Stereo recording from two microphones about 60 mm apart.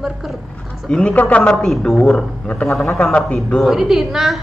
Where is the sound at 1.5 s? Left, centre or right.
Centre.